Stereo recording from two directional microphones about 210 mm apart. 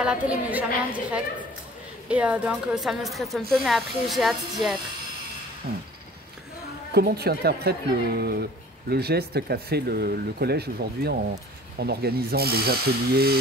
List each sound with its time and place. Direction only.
0.0 s a woman's voice: 5° right (ahead or behind)
2.0 s speech: 5° right (ahead or behind)
5.7 s speech: 45° right (ahead or behind)
6.9 s speech: 50° right (ahead or behind)